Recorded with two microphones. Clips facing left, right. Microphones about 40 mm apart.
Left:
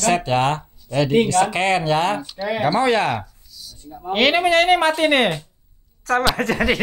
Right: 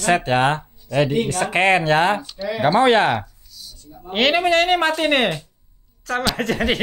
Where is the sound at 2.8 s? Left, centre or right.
Right.